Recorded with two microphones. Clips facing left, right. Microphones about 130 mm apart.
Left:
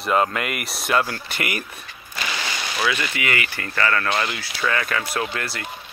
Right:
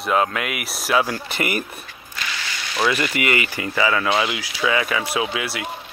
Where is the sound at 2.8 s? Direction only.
5° right (ahead or behind).